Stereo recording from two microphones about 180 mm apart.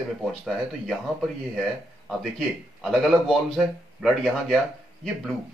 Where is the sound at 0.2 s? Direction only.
Centre (ahead or behind).